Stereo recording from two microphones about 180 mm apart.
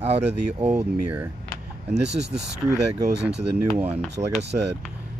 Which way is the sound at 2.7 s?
70° right (ahead or behind).